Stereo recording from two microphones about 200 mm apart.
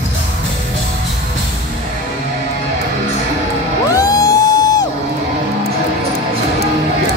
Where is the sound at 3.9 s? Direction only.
15° left (ahead or behind).